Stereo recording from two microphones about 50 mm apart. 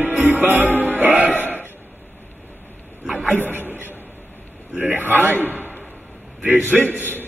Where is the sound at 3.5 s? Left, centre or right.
Right.